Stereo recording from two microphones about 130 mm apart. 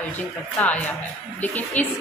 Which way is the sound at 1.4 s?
15° left (ahead or behind).